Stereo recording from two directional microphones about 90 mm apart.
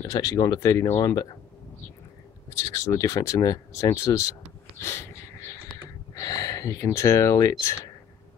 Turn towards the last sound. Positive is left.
turn(degrees=35)  # may be behind; listen again after turning